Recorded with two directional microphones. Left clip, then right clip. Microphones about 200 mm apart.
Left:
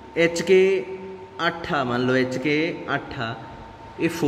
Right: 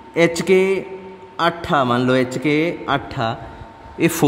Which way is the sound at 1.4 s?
50° right (ahead or behind).